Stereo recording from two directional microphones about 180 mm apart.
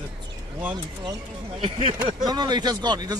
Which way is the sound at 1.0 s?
30° right (ahead or behind).